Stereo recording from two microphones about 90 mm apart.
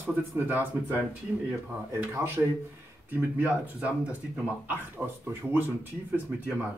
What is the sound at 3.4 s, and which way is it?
Speech, 15° right (ahead or behind).